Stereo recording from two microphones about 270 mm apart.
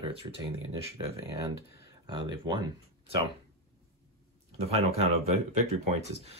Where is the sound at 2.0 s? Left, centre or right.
Centre.